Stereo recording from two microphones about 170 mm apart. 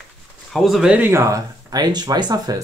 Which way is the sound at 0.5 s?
Centre (ahead or behind).